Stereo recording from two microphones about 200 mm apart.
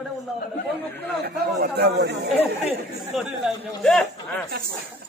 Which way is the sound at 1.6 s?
50° right (ahead or behind).